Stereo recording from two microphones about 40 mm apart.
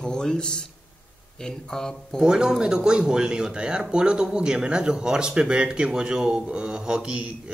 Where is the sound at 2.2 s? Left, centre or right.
Centre.